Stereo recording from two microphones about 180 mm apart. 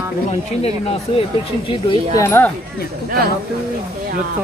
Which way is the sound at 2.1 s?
15° left (ahead or behind).